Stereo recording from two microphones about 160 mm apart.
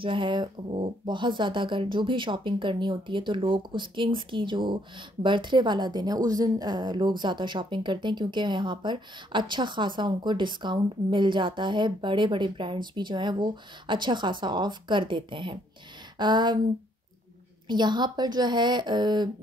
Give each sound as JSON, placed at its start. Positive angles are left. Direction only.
{"t": 0.0, "sound": "a woman's voice", "side_deg": -30}
{"t": 17.6, "sound": "a woman's voice", "side_deg": -25}